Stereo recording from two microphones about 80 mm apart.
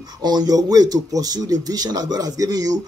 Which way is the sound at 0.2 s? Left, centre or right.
Right.